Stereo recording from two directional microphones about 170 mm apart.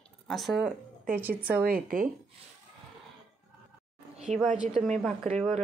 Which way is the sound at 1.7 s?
60° right (ahead or behind).